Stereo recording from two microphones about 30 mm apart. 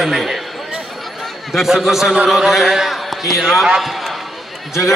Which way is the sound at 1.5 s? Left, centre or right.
Centre.